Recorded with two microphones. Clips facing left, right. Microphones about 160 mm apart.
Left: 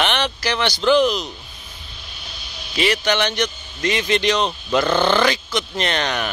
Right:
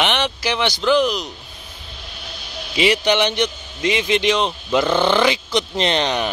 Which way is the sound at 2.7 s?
15° right (ahead or behind).